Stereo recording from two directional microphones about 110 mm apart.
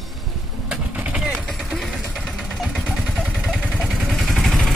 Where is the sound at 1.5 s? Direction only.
Centre (ahead or behind).